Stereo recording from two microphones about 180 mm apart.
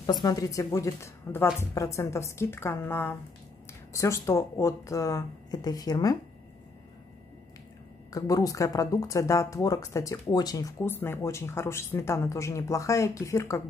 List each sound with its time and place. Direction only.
0.2 s speech: 20° left (ahead or behind)
8.1 s speech: 20° left (ahead or behind)